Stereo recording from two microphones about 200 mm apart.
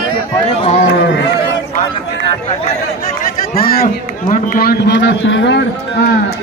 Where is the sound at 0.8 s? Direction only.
60° left (ahead or behind).